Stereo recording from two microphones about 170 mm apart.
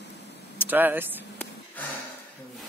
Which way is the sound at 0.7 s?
10° right (ahead or behind).